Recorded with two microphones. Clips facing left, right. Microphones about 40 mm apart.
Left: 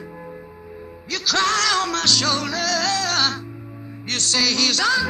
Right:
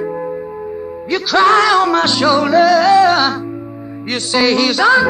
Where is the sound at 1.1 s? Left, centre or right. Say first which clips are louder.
Right 9 dB; centre.